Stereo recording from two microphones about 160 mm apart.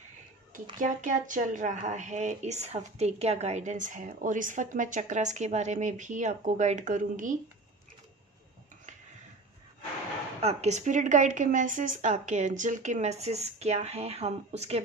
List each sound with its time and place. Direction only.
0.7 s speech: 55° right (ahead or behind)
10.4 s speech: 40° right (ahead or behind)